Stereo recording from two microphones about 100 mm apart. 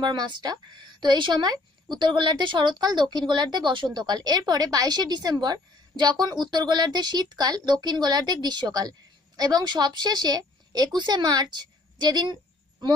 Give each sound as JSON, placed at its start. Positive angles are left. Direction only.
{"t": 0.0, "sound": "speech", "side_deg": -45}